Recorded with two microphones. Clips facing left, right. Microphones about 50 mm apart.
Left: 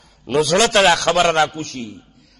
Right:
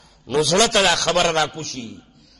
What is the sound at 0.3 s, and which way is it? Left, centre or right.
A man's voice, centre.